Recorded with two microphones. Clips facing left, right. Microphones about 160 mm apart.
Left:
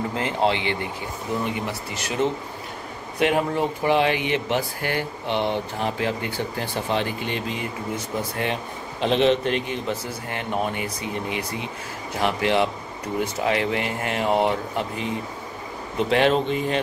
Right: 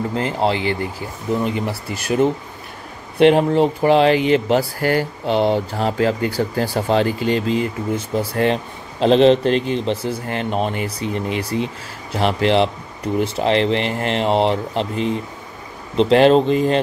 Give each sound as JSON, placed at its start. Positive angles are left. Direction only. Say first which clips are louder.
{"t": 0.1, "sound": "speech", "louder": "right 2 dB", "side_deg": -35}
{"t": 3.2, "sound": "speech", "louder": "right 8 dB", "side_deg": -25}
{"t": 3.8, "sound": "speech", "louder": "right 6 dB", "side_deg": -35}